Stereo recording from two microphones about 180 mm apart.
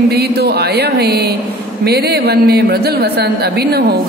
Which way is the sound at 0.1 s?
65° right (ahead or behind).